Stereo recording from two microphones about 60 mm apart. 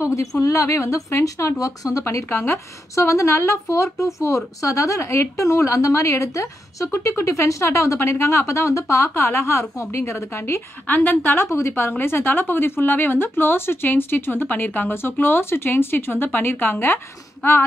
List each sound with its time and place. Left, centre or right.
0.0 s a woman's voice: left
2.0 s a woman's voice: left
10.9 s speech: left